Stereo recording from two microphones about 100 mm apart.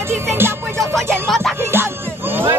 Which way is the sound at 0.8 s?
Centre (ahead or behind).